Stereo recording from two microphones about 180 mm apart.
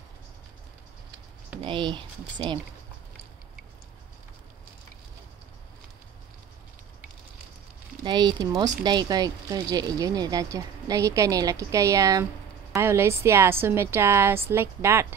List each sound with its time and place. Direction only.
1.6 s speech: 25° right (ahead or behind)
8.0 s a woman's voice: 25° right (ahead or behind)